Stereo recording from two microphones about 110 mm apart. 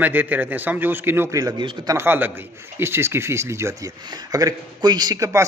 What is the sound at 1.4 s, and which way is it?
Speech, 40° right (ahead or behind).